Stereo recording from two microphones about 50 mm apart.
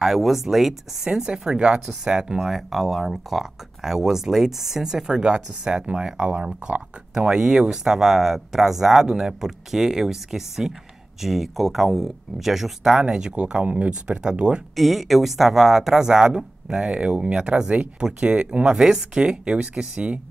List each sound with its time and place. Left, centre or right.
0.0 s speech: centre
13.0 s speech: centre
14.8 s speech: centre; by 18.8 s right
18.8 s speech: centre